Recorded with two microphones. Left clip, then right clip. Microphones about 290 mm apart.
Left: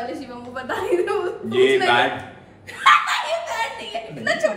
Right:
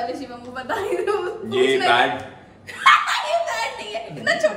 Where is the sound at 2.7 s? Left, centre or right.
Centre.